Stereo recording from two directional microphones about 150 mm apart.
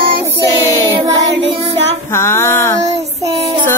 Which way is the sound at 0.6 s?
20° left (ahead or behind).